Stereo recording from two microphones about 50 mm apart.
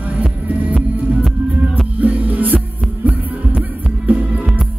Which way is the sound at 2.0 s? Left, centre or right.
Right.